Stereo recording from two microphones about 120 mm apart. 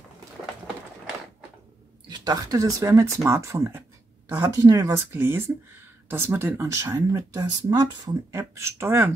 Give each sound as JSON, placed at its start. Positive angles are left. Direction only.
{"t": 2.0, "sound": "speech", "side_deg": -35}
{"t": 4.6, "sound": "speech", "side_deg": -30}